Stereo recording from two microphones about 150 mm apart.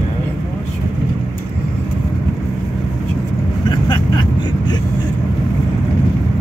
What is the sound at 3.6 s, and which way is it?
Vehicle, 30° left (ahead or behind).